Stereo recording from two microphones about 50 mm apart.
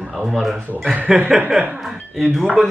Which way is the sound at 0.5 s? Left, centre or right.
Right.